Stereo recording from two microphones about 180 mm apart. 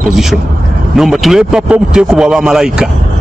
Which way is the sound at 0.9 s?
Centre (ahead or behind).